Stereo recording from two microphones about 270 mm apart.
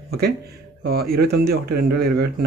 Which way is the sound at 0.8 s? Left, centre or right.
Right.